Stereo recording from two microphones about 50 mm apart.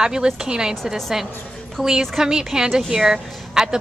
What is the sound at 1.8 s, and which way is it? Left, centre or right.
A woman's voice, centre.